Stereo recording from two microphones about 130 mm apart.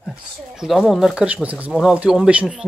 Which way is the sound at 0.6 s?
Centre (ahead or behind).